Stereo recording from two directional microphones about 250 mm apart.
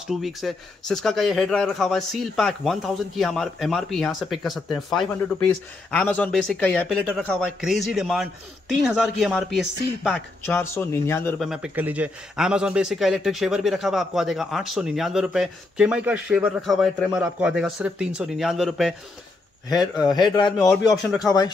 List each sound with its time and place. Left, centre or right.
0.0 s speech: centre
20.1 s a man's voice: centre
20.7 s speech: centre
21.2 s a man's voice: centre